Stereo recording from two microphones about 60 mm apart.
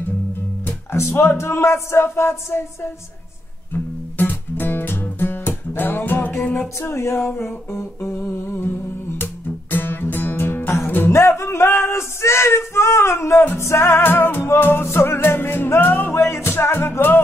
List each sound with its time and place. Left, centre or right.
0.7 s music: left
3.7 s music: left
6.4 s music: centre
6.8 s music: left
7.3 s humming: left
9.2 s music: left
11.1 s music: left